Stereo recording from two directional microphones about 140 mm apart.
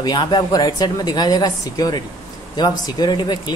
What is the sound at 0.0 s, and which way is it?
A woman's voice, 30° left (ahead or behind).